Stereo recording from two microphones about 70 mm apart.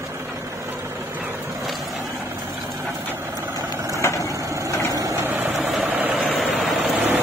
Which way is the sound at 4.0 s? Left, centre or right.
Left.